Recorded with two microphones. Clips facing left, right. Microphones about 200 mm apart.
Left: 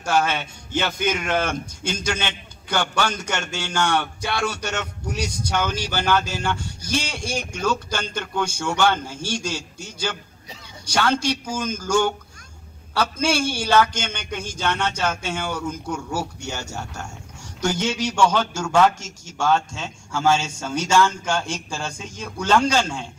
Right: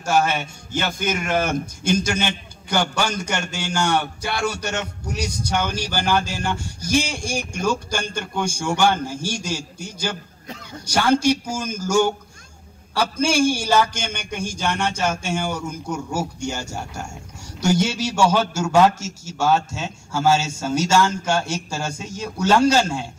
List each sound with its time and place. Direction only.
0.0 s a man's voice: 10° right (ahead or behind)